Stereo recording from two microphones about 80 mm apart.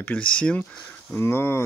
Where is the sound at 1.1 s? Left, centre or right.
Left.